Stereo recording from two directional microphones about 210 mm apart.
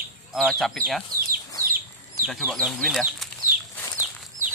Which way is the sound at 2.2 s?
5° right (ahead or behind).